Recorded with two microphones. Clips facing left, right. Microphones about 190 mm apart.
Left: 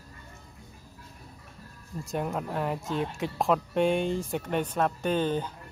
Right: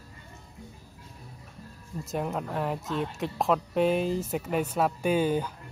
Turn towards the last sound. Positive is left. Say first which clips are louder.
# right 2 dB
turn(degrees=-10)  # may be behind; listen again after turning